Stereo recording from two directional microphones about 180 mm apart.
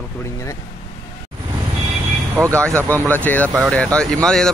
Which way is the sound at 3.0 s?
10° left (ahead or behind).